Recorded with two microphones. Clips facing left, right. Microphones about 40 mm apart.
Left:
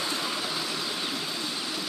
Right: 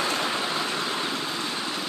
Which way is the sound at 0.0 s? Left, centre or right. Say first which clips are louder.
Right 5 dB; right.